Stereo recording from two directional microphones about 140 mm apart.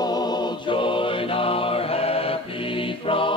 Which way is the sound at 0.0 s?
30° left (ahead or behind).